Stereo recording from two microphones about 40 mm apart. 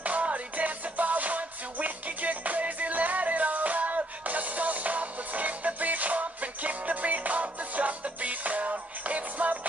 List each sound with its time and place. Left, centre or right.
0.0 s music: right